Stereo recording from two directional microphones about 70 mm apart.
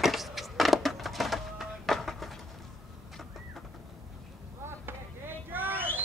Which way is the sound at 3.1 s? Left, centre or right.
Centre.